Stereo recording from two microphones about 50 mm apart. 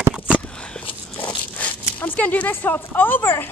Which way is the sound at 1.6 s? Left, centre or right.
Left.